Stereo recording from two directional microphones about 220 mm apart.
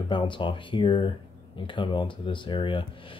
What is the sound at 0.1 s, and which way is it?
Speech, 20° left (ahead or behind).